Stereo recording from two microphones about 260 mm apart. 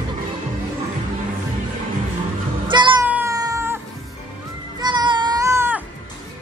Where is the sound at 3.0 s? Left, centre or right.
Centre.